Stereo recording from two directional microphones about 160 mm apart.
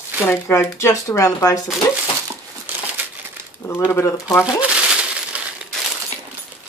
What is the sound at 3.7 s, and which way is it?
Speech, 15° left (ahead or behind).